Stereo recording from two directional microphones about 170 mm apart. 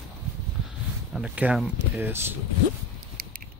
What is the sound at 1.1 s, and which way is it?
Speech, 5° right (ahead or behind).